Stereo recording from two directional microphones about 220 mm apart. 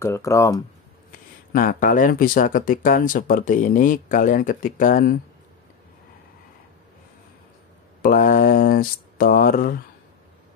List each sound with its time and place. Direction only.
0.0 s speech: 15° left (ahead or behind)
1.5 s speech: 40° left (ahead or behind)
8.0 s speech: 40° left (ahead or behind)